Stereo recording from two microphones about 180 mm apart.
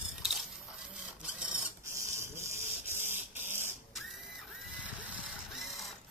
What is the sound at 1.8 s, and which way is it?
Printer, 15° right (ahead or behind).